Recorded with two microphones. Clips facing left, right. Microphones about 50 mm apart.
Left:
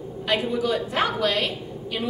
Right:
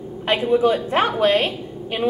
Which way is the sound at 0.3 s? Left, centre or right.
Right.